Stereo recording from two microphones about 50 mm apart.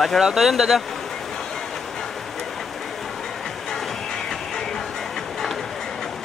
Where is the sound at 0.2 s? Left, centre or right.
Centre.